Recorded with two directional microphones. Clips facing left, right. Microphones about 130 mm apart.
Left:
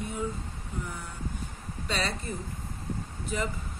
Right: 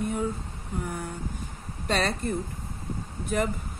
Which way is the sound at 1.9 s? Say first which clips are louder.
Right 6 dB; 50° right (ahead or behind).